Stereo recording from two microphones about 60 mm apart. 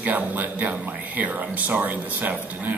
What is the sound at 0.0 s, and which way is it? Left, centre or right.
Speech, right.